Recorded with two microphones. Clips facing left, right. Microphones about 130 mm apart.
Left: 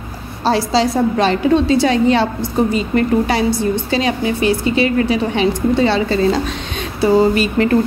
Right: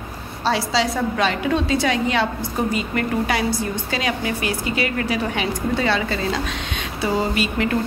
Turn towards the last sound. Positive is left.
turn(degrees=40)  # may be behind; listen again after turning